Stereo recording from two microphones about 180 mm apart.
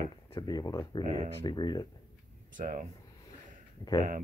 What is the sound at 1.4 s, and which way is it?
Speech, 25° left (ahead or behind).